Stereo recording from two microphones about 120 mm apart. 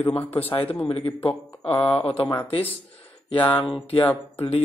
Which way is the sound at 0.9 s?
55° left (ahead or behind).